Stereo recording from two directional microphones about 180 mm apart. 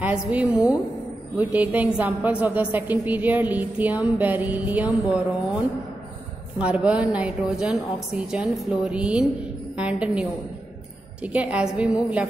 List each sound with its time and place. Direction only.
0.0 s a woman's voice: 10° right (ahead or behind)
6.6 s a woman's voice: 5° right (ahead or behind)
11.3 s a woman's voice: 5° right (ahead or behind)